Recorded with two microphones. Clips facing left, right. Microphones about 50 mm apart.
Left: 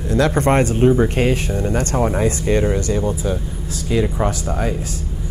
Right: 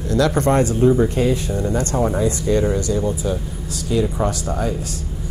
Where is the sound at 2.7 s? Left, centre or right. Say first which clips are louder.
Left 1 dB; left.